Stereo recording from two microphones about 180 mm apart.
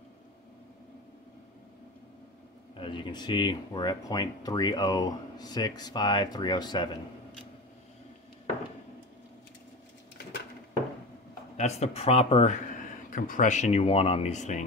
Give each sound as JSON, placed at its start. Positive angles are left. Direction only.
{"t": 2.8, "sound": "speech", "side_deg": 25}
{"t": 11.5, "sound": "speech", "side_deg": 35}
{"t": 13.1, "sound": "speech", "side_deg": 45}